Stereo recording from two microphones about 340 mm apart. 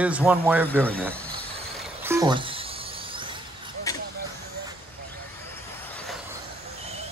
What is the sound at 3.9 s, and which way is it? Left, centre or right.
Vehicle, centre.